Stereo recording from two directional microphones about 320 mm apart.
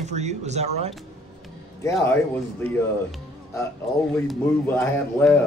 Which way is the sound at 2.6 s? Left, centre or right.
Centre.